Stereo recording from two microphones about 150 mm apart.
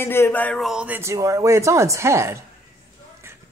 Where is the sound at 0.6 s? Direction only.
5° right (ahead or behind).